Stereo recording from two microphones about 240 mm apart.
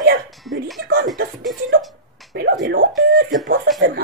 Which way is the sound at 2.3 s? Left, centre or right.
Right.